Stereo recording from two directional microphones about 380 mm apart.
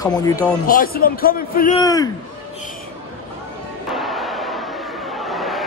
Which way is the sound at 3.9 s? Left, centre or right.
Centre.